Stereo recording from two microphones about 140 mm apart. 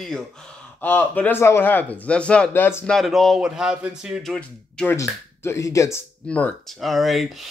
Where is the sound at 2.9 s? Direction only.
Centre (ahead or behind).